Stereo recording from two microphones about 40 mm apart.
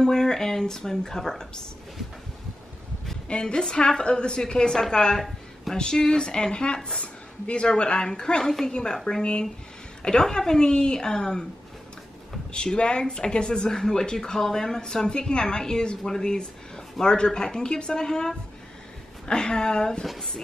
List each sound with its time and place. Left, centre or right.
0.0 s speech: centre
3.3 s a woman's voice: left
12.5 s a woman's voice: left